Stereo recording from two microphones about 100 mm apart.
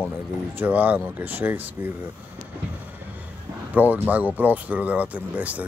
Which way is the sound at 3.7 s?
15° right (ahead or behind).